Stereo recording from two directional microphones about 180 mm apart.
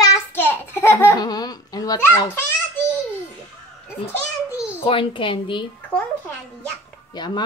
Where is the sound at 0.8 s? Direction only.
10° left (ahead or behind).